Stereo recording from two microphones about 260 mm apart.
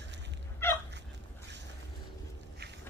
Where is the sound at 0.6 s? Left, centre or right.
Centre.